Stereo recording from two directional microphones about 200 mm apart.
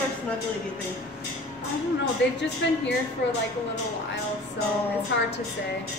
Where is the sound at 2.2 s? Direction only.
65° left (ahead or behind).